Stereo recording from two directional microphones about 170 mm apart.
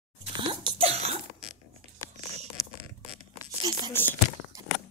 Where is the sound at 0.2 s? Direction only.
35° right (ahead or behind).